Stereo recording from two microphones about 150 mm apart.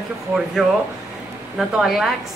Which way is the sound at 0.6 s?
5° right (ahead or behind).